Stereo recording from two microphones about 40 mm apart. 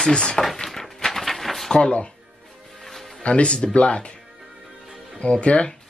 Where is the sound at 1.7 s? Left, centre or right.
Left.